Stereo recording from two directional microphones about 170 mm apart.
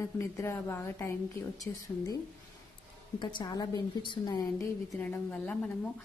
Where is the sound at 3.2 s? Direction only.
25° left (ahead or behind).